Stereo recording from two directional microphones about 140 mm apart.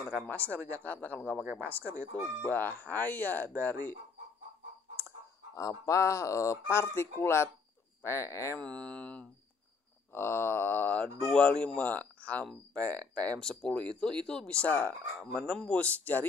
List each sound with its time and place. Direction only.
0.0 s speech: 10° left (ahead or behind)
5.5 s speech: 25° left (ahead or behind)
8.5 s speech: 10° left (ahead or behind)